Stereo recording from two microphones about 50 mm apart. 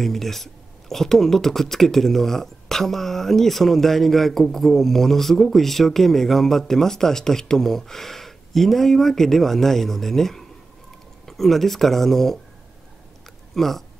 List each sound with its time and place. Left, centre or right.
0.0 s speech: centre
13.6 s speech: centre